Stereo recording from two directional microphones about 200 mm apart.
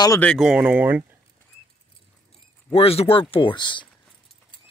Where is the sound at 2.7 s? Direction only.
30° left (ahead or behind).